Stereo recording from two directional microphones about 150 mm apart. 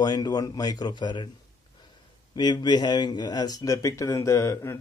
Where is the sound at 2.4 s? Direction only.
30° left (ahead or behind).